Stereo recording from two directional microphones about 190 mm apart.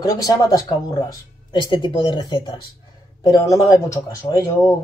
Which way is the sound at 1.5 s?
25° left (ahead or behind).